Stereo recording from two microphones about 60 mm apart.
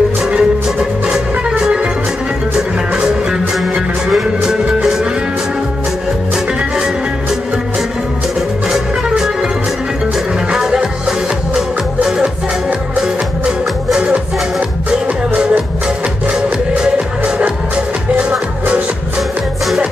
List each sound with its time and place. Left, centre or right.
0.3 s music: centre
4.4 s music: centre
8.6 s music: centre
10.5 s music: centre
13.9 s music: right